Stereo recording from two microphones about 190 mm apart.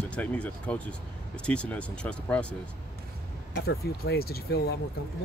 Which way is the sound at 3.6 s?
55° left (ahead or behind).